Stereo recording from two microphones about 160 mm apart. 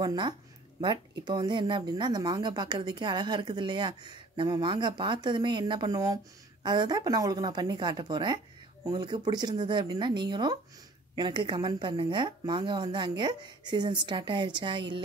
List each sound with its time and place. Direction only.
0.0 s a woman's voice: 25° right (ahead or behind)